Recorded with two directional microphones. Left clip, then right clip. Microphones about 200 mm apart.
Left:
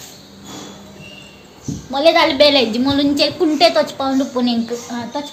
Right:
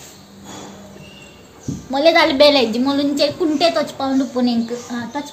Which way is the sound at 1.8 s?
20° right (ahead or behind).